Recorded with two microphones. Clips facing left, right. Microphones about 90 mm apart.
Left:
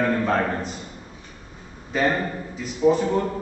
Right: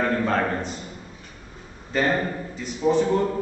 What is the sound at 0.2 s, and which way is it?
Speech, centre (ahead or behind).